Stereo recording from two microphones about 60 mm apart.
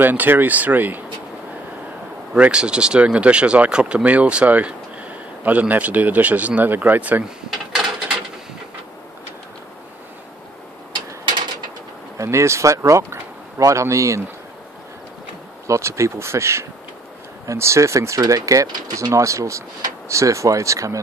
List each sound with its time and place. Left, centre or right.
0.0 s speech: right
2.3 s speech: centre
12.2 s speech: right
15.6 s speech: right